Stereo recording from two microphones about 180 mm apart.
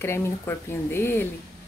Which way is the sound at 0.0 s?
15° left (ahead or behind).